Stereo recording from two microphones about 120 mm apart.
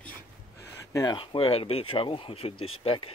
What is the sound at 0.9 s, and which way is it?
Speech, 35° left (ahead or behind).